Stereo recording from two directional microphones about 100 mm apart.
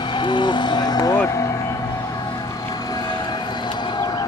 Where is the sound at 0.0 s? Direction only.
50° left (ahead or behind).